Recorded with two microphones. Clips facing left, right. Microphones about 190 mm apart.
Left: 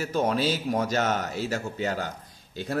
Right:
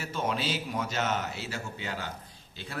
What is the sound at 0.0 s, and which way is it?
A man's voice, 40° left (ahead or behind).